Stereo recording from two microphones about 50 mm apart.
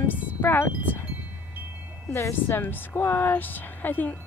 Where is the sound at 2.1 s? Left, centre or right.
Left.